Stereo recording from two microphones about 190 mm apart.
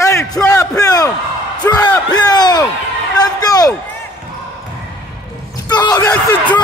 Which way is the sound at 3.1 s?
20° left (ahead or behind).